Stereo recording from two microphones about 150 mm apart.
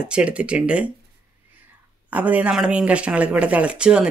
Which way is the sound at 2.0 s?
10° right (ahead or behind).